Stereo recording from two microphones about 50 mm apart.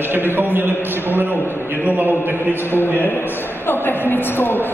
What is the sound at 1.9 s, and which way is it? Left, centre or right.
Speech, right.